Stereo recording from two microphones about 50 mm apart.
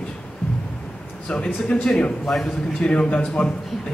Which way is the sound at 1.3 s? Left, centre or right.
Left.